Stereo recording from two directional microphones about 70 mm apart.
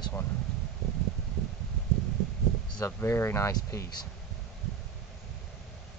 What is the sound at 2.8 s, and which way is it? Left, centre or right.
Speech, left.